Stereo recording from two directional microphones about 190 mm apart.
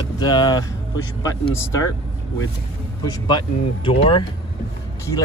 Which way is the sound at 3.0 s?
20° left (ahead or behind).